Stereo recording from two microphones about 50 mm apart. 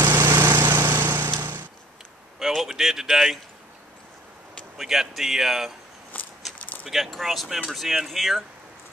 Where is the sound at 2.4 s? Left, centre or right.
Centre.